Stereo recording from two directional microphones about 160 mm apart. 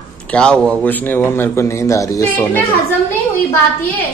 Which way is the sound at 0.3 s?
5° left (ahead or behind).